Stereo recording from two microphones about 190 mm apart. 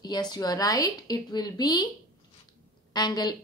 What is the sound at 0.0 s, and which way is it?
A woman's voice, 20° left (ahead or behind).